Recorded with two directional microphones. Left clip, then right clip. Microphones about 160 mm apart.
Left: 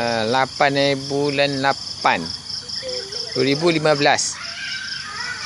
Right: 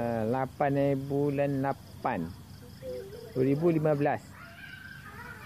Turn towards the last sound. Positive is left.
turn(degrees=20)  # may be behind; listen again after turning